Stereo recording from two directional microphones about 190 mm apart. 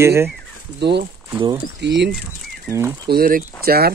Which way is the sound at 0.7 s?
60° right (ahead or behind).